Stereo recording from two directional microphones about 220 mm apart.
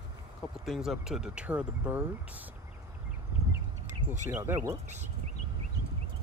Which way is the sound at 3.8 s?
35° right (ahead or behind).